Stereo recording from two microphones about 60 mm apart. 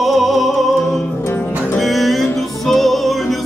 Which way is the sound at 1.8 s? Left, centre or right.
Centre.